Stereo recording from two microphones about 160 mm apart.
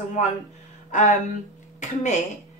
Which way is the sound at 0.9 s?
50° left (ahead or behind).